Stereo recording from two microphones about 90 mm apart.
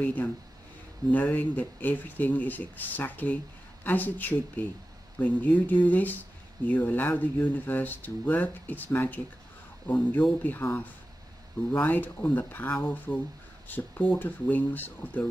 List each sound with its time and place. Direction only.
0.0 s speech: 15° left (ahead or behind)